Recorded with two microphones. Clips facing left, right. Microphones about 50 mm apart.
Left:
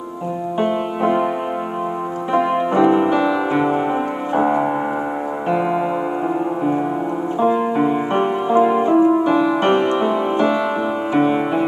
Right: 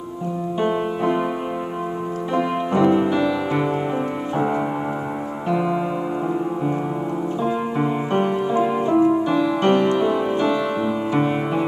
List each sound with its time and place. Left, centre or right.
0.6 s music: centre
2.3 s piano: centre
4.4 s music: centre
8.1 s music: left